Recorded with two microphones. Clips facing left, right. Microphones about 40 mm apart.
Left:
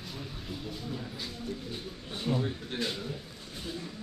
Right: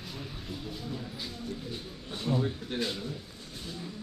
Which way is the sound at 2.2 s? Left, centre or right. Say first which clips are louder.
Right 1 dB; centre.